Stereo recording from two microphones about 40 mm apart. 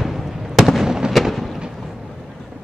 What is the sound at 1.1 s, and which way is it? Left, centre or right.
Thunder, centre.